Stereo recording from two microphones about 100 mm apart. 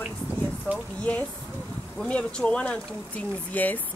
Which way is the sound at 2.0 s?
10° left (ahead or behind).